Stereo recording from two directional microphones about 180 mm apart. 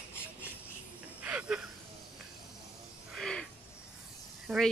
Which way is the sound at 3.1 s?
Centre (ahead or behind).